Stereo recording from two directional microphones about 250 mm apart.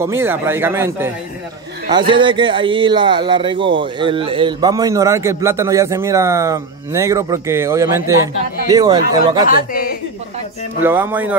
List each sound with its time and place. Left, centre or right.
0.0 s a man's voice: centre
9.5 s a woman's voice: left
10.8 s a man's voice: centre